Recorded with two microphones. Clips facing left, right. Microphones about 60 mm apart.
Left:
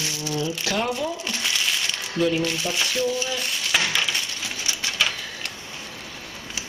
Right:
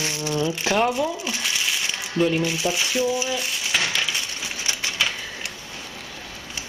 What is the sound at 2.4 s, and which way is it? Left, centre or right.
Speech, centre.